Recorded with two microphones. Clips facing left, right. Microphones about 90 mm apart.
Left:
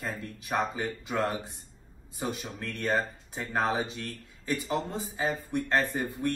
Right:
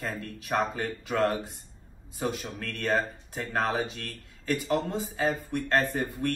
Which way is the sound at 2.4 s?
Centre (ahead or behind).